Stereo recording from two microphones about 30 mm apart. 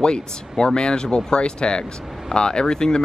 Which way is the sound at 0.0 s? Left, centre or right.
Left.